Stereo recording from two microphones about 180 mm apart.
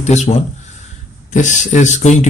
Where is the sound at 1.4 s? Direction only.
45° left (ahead or behind).